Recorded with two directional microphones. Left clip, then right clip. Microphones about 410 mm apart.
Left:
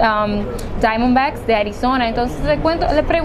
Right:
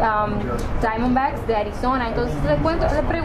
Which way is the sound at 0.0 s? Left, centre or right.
Left.